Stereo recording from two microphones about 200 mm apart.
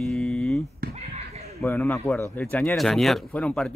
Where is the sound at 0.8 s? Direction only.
50° right (ahead or behind).